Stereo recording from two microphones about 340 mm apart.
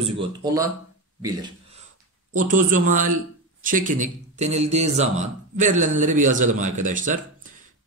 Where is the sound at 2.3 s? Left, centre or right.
Right.